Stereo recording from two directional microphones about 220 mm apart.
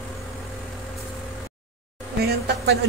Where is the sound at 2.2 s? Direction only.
45° right (ahead or behind).